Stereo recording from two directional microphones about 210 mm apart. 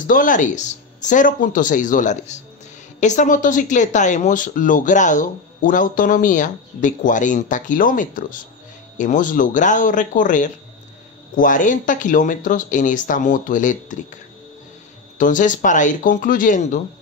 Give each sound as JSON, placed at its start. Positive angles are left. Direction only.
{"t": 0.0, "sound": "speech", "side_deg": 40}
{"t": 15.1, "sound": "speech", "side_deg": 40}